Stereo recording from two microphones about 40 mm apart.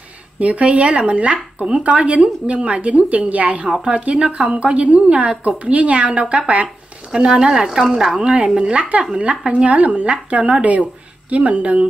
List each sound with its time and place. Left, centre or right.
0.4 s a woman's voice: right
7.1 s speech: centre
8.2 s a woman's voice: right
9.5 s speech: right